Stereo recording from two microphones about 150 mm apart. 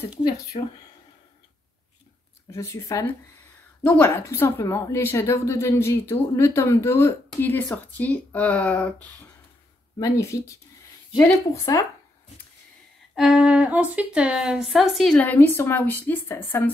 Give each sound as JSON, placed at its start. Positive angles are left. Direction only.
{"t": 0.5, "sound": "speech", "side_deg": 40}
{"t": 2.5, "sound": "a woman's voice", "side_deg": 20}
{"t": 9.9, "sound": "speech", "side_deg": 20}
{"t": 13.1, "sound": "speech", "side_deg": 0}